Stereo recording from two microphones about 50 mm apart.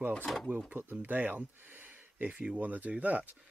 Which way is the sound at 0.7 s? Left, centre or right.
Right.